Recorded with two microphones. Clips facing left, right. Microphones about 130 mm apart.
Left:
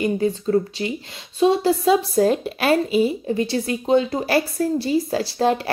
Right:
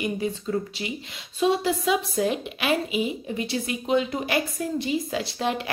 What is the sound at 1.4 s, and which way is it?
Speech, 30° left (ahead or behind).